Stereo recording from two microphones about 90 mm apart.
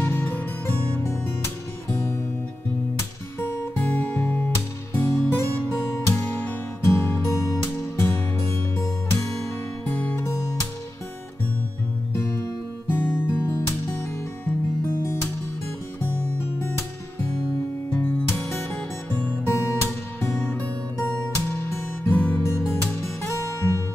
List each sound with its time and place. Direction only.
0.0 s music: 25° left (ahead or behind)
3.0 s music: 25° left (ahead or behind)
5.0 s music: 30° left (ahead or behind)
9.8 s music: 20° left (ahead or behind)
12.2 s music: 30° left (ahead or behind)
16.0 s music: 25° left (ahead or behind)
17.9 s music: 20° left (ahead or behind)
20.3 s music: 15° left (ahead or behind)
22.7 s music: 30° left (ahead or behind)